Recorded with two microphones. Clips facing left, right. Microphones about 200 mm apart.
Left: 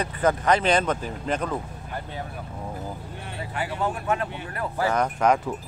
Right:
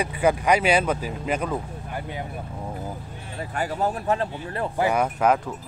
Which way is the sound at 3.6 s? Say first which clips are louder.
Right 2 dB; 35° right (ahead or behind).